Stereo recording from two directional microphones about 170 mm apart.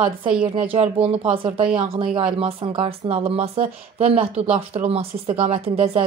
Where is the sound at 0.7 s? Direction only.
35° right (ahead or behind).